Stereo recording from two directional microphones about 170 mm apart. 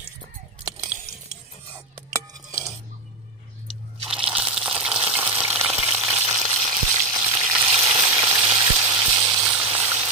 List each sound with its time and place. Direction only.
4.1 s water: 5° right (ahead or behind)
6.0 s frying: 5° right (ahead or behind)
6.9 s frying: 15° right (ahead or behind)
8.5 s a sound: 15° right (ahead or behind)